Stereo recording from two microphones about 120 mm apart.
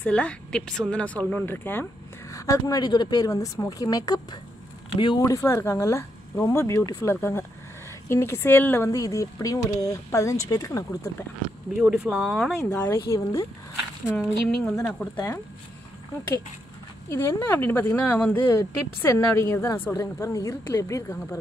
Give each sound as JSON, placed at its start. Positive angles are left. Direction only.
{"t": 0.0, "sound": "a woman's voice", "side_deg": 10}
{"t": 4.9, "sound": "speech", "side_deg": 45}
{"t": 5.2, "sound": "speech", "side_deg": 25}
{"t": 11.7, "sound": "speech", "side_deg": -5}
{"t": 12.9, "sound": "speech", "side_deg": 25}
{"t": 14.1, "sound": "speech", "side_deg": 5}
{"t": 17.1, "sound": "speech", "side_deg": 20}